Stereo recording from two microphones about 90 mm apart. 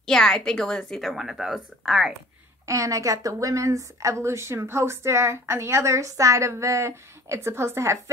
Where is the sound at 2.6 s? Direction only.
35° right (ahead or behind).